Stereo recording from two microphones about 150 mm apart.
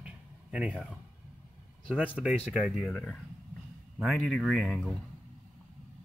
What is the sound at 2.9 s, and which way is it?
Speech, 10° left (ahead or behind).